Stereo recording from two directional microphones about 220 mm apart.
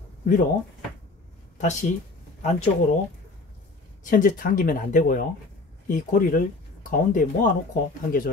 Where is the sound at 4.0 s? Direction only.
40° left (ahead or behind).